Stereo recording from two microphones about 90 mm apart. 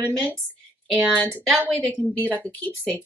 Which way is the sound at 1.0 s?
15° right (ahead or behind).